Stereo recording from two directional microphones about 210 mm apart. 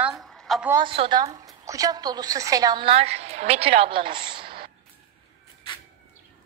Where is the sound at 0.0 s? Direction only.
Centre (ahead or behind).